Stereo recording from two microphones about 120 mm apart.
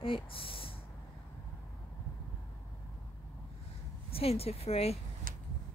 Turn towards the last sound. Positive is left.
turn(degrees=55)  # may be behind; listen again after turning